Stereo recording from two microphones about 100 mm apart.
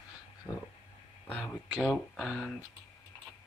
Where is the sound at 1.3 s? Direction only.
10° left (ahead or behind).